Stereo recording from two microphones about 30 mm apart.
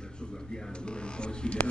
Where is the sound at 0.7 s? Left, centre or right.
Left.